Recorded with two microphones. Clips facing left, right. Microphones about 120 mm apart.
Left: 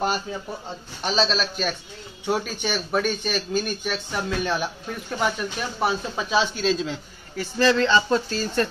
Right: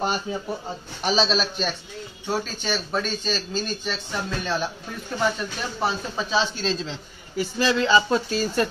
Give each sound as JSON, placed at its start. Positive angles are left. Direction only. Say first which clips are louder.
{"t": 0.0, "sound": "a man's voice", "louder": "even", "side_deg": 0}
{"t": 2.2, "sound": "speech", "louder": "left 2 dB", "side_deg": 15}
{"t": 7.3, "sound": "speech", "louder": "left 2 dB", "side_deg": -10}